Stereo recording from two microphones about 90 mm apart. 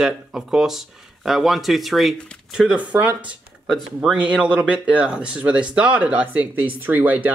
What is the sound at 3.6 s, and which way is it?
Speech, centre (ahead or behind).